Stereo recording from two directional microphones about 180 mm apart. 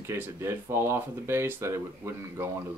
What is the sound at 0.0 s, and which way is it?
Speech, 15° right (ahead or behind).